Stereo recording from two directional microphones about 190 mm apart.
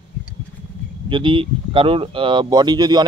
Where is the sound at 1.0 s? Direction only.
25° right (ahead or behind).